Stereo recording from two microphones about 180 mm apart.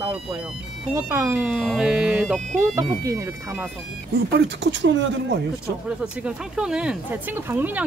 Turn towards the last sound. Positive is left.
turn(degrees=-10)  # may be behind; listen again after turning